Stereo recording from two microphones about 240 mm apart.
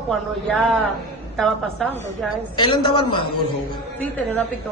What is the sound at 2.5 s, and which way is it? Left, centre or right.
Speech, centre.